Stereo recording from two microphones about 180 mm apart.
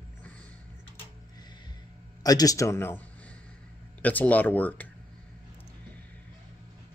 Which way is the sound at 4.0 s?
10° left (ahead or behind).